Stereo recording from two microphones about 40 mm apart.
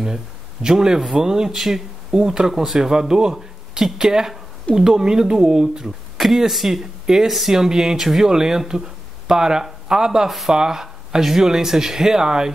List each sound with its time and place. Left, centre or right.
0.0 s speech: centre